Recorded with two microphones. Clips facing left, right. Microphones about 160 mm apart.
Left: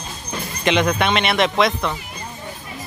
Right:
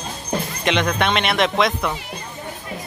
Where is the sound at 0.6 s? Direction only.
Centre (ahead or behind).